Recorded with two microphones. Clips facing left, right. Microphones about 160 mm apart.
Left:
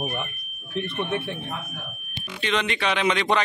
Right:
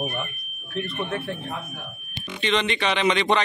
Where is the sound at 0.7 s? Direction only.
20° left (ahead or behind).